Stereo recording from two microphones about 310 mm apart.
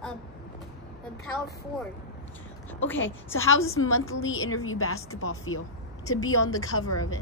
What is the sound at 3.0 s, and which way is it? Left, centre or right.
A woman's voice, left.